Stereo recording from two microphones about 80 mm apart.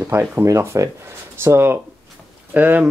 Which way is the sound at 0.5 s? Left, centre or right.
Right.